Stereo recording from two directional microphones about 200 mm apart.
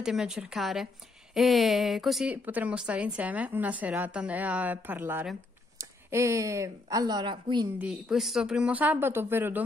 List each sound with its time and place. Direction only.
0.0 s a woman's voice: 5° right (ahead or behind); by 7.6 s 25° right (ahead or behind)
7.8 s speech: centre (ahead or behind)